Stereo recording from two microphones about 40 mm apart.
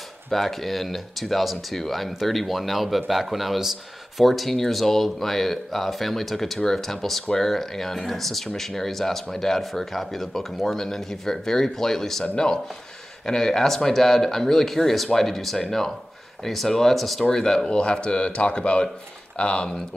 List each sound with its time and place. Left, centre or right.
0.3 s speech: centre
17.2 s speech: centre